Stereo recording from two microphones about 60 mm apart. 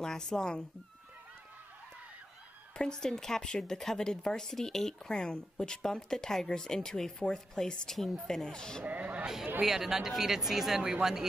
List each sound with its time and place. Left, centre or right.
0.0 s speech: centre
2.8 s speech: centre
8.8 s speech: right
9.6 s speech: centre